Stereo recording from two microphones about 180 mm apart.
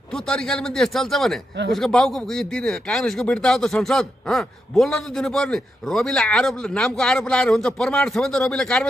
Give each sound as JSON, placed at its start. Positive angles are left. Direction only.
{"t": 0.1, "sound": "speech", "side_deg": 5}